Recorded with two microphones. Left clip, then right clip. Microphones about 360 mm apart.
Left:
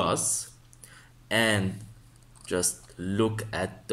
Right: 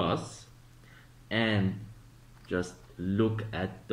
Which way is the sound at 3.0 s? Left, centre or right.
Centre.